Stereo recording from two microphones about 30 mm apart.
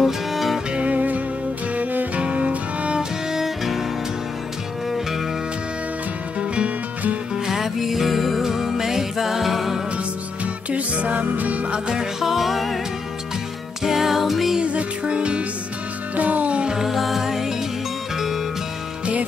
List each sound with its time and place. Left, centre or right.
0.0 s music: centre
0.7 s music: right
1.8 s music: right
2.1 s music: right
3.0 s music: centre
7.4 s music: centre
10.4 s music: right
11.7 s music: right
12.2 s music: centre
13.8 s music: centre
14.6 s music: right
16.2 s music: right
16.8 s music: centre